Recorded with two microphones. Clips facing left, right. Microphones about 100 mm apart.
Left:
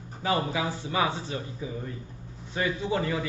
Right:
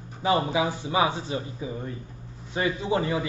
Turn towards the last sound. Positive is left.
turn(degrees=-20)  # may be behind; listen again after turning